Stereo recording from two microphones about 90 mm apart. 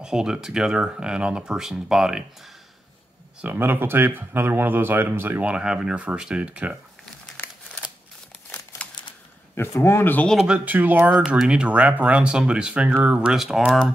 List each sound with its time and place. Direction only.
0.0 s speech: 10° right (ahead or behind)
3.3 s speech: 20° right (ahead or behind)
5.4 s speech: 10° right (ahead or behind)
9.6 s speech: 30° left (ahead or behind)
10.4 s speech: 15° right (ahead or behind)